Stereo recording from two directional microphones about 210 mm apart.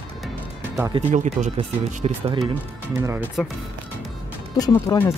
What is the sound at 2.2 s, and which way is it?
Speech, 25° right (ahead or behind).